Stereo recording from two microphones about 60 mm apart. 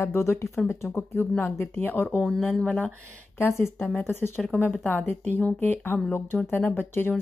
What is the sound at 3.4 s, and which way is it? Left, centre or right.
Speech, left.